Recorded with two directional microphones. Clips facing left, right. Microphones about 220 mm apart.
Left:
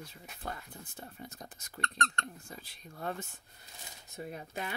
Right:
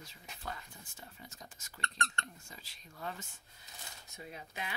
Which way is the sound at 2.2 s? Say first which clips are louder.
Left 6 dB; 55° left (ahead or behind).